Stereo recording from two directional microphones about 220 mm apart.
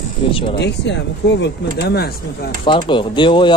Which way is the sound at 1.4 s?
45° left (ahead or behind).